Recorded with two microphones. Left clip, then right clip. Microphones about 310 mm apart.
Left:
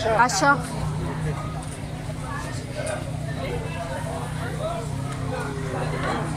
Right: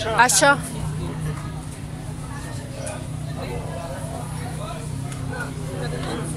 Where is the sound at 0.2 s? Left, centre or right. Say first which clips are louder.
Right 5 dB; right.